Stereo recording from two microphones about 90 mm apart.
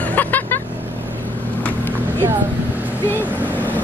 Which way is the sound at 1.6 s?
25° left (ahead or behind).